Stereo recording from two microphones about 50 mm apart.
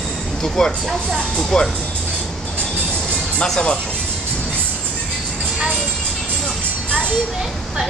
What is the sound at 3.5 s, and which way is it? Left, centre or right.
Speech, centre.